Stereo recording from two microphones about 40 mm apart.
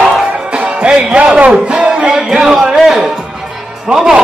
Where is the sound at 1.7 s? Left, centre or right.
Right.